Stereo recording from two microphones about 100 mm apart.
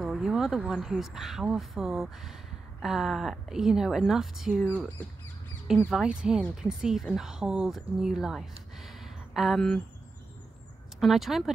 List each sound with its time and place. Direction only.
0.0 s speech: 5° right (ahead or behind)
4.6 s speech: 20° left (ahead or behind)
5.9 s speech: 5° right (ahead or behind)
8.7 s a sound: centre (ahead or behind)
11.0 s speech: centre (ahead or behind)